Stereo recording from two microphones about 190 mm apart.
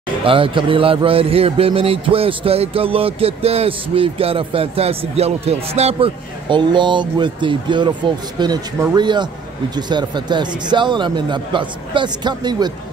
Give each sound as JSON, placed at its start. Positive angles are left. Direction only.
{"t": 0.2, "sound": "a man's voice", "side_deg": -25}